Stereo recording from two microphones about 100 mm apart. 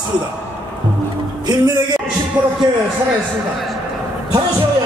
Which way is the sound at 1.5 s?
45° right (ahead or behind).